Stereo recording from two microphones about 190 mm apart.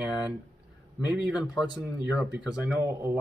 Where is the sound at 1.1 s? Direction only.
5° right (ahead or behind).